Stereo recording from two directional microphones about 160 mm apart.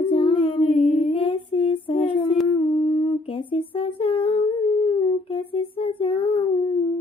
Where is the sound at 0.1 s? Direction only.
35° left (ahead or behind).